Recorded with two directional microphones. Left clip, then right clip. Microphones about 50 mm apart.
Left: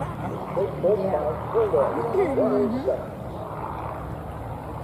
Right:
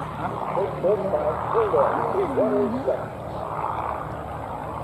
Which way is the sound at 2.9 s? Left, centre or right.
Right.